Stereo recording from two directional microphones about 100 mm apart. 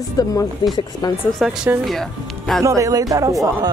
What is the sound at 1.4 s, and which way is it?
Speech, centre (ahead or behind).